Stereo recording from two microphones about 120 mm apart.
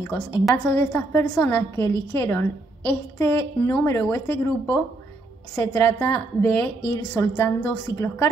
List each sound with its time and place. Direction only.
0.7 s a woman's voice: 15° left (ahead or behind)